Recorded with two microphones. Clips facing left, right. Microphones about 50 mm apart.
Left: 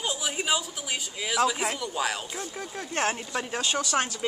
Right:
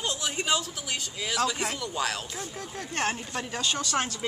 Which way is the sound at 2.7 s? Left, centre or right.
Left.